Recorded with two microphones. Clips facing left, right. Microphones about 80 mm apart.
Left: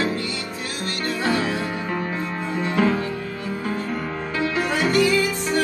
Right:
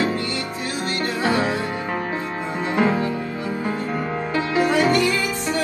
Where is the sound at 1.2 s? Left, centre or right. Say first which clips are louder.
Right 2 dB; right.